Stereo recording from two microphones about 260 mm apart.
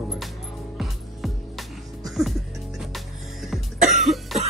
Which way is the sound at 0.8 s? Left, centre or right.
Centre.